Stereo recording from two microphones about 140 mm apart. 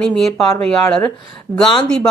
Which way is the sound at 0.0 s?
5° left (ahead or behind).